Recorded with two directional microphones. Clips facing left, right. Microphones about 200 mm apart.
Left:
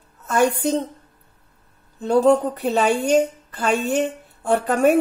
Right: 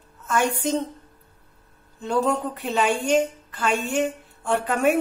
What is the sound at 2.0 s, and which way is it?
A woman's voice, 35° left (ahead or behind).